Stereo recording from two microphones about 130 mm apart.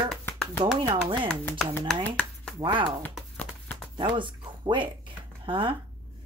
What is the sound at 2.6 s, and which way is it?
Speech, 35° right (ahead or behind).